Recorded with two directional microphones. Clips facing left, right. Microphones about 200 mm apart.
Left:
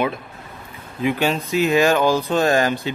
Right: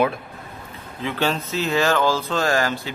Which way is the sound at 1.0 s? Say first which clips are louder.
Left 4 dB; 15° left (ahead or behind).